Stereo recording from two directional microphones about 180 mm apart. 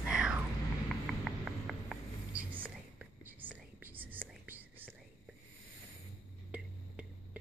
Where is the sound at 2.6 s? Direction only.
10° right (ahead or behind).